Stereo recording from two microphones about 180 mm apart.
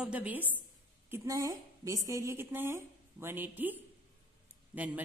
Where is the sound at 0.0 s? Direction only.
5° right (ahead or behind).